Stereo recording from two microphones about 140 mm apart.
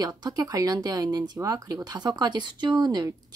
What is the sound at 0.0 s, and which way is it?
Speech, 25° right (ahead or behind).